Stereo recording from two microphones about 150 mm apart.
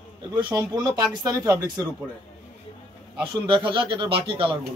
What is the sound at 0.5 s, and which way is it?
Speech, 20° right (ahead or behind).